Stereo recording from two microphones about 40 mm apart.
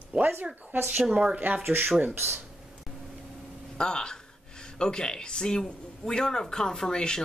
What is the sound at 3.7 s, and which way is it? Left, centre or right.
Speech, left.